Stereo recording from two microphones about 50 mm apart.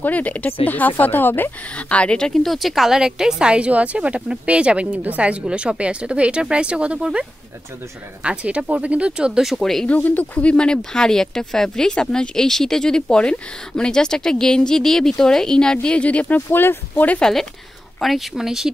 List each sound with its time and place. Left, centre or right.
0.0 s speech: left
1.8 s speech: left
2.4 s speech: centre
9.6 s speech: centre
9.8 s speech: left
10.5 s speech: centre; by 17.2 s left
17.2 s speech: centre